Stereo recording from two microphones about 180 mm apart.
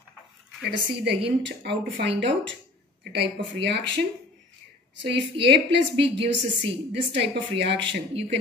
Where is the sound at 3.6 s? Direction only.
75° right (ahead or behind).